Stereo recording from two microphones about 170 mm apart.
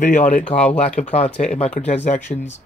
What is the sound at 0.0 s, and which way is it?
Speech, 45° left (ahead or behind).